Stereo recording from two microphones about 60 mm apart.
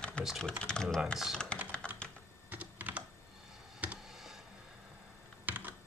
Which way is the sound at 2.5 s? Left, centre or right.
Right.